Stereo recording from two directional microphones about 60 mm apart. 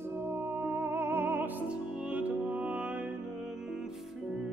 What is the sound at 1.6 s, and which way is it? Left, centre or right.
Music, centre.